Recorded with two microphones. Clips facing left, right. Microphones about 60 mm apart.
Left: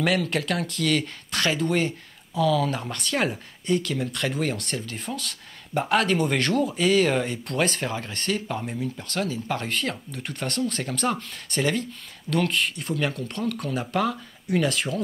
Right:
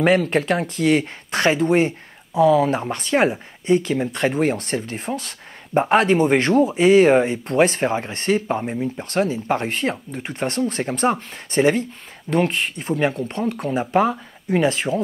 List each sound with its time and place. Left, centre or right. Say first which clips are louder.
0.0 s speech: right 7 dB; right